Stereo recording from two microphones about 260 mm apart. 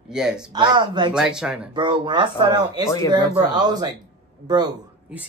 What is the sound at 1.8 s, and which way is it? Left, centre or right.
A man's voice, centre.